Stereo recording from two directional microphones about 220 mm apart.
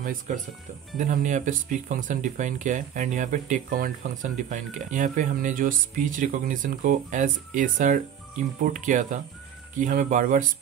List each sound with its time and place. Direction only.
0.3 s speech: 35° right (ahead or behind)